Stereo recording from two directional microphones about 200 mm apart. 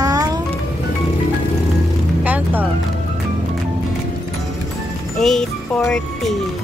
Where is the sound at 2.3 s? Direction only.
10° right (ahead or behind).